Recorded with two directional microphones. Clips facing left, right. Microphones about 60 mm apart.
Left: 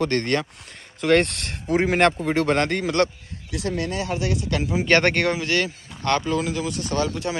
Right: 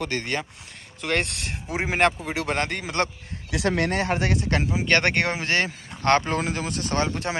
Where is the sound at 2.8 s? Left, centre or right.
Centre.